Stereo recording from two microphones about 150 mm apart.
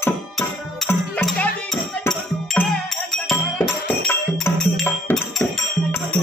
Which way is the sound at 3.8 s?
15° left (ahead or behind).